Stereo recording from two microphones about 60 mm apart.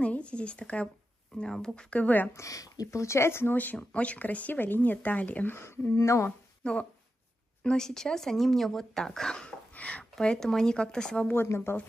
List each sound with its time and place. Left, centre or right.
0.0 s speech: centre
2.3 s speech: left
3.7 s speech: left
5.6 s speech: left
5.9 s speech: left
6.6 s speech: centre
9.7 s a sound: left
10.2 s speech: centre
11.4 s speech: left